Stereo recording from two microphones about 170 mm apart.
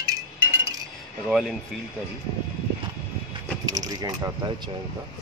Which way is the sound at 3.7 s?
20° right (ahead or behind).